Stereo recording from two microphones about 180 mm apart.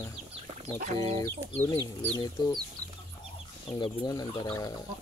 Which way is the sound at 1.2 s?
15° left (ahead or behind).